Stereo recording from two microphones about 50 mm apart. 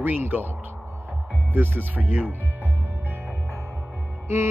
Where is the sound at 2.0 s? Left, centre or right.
Right.